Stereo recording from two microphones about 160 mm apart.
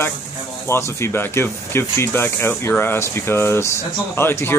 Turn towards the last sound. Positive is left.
turn(degrees=15)  # may be behind; listen again after turning